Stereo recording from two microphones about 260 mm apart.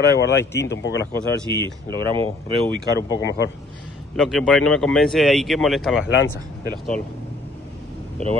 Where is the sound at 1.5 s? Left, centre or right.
Centre.